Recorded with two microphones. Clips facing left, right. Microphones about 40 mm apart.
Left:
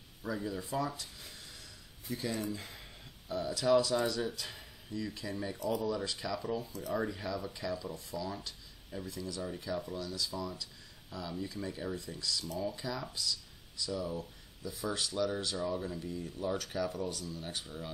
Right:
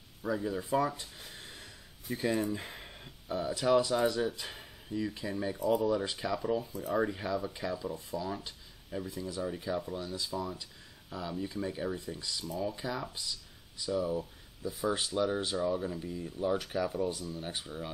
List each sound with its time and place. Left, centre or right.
0.2 s speech: centre
0.5 s speech: right
6.4 s speech: centre